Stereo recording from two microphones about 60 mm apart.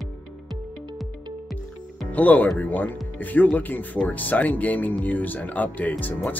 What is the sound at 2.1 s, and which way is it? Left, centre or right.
Speech, left.